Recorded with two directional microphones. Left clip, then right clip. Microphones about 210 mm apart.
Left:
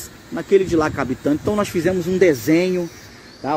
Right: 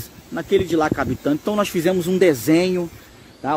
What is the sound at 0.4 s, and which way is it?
Speech, 5° right (ahead or behind).